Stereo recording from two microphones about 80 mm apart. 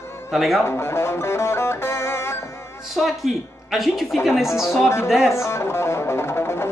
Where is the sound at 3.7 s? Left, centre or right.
Centre.